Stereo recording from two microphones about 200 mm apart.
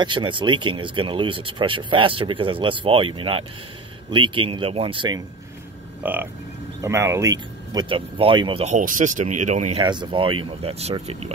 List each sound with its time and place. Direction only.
0.0 s speech: 25° right (ahead or behind)
6.0 s speech: 10° right (ahead or behind); by 9.8 s 35° right (ahead or behind)
9.8 s speech: 25° right (ahead or behind)